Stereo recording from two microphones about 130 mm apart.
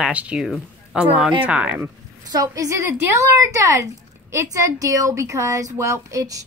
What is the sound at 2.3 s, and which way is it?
Speech, 30° right (ahead or behind).